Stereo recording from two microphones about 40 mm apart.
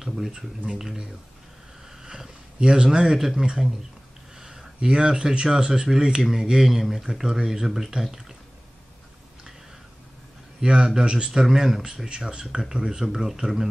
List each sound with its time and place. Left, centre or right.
0.0 s speech: centre
2.0 s speech: centre
4.4 s a sound: centre
4.7 s speech: centre
10.6 s speech: right
11.5 s speech: centre
13.0 s speech: centre